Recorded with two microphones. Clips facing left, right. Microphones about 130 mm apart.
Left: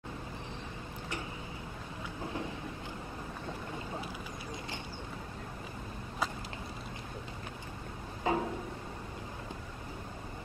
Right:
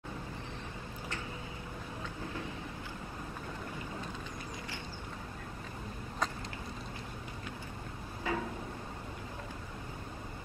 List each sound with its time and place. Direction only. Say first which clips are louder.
8.3 s music: left 4 dB; 20° left (ahead or behind)